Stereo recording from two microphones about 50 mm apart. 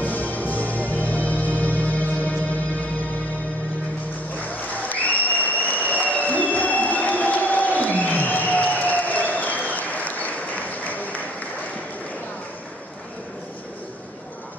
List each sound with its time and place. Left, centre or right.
0.0 s music: left
4.6 s applause: left